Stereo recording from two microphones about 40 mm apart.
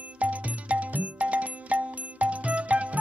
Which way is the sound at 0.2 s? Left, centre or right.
Right.